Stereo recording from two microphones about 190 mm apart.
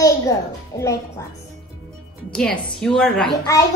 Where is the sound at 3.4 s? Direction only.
15° left (ahead or behind).